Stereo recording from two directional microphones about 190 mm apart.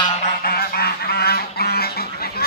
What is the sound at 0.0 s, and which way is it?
Goose, 35° left (ahead or behind).